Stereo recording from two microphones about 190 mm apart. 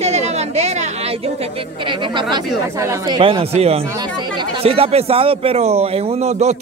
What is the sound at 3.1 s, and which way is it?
Speech, 30° right (ahead or behind).